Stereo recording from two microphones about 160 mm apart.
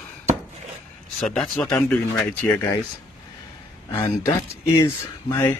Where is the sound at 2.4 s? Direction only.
20° left (ahead or behind).